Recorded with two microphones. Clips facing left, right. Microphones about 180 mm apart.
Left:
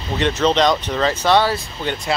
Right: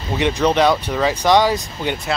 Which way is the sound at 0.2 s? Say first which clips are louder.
Right 1 dB; 10° right (ahead or behind).